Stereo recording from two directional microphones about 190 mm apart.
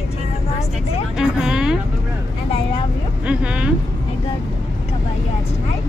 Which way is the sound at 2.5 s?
30° left (ahead or behind).